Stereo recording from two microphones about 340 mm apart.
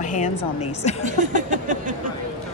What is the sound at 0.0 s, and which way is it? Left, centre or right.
Speech, left.